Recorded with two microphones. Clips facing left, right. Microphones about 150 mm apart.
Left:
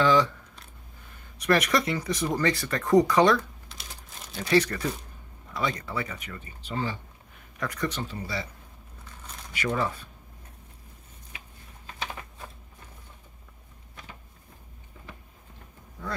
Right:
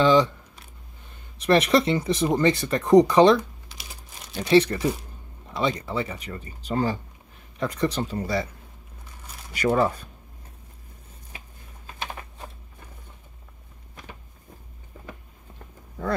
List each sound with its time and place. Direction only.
0.0 s speech: 20° right (ahead or behind)
1.4 s speech: 25° right (ahead or behind)
3.6 s typing: 5° right (ahead or behind)
4.4 s speech: 25° right (ahead or behind); by 7.0 s 45° right (ahead or behind)
7.5 s speech: 25° right (ahead or behind)
8.0 s speech: 45° right (ahead or behind)
9.5 s speech: 40° right (ahead or behind)